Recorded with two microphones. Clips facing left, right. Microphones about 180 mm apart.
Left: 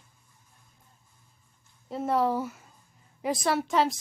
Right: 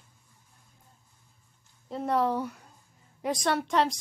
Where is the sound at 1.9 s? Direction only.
Centre (ahead or behind).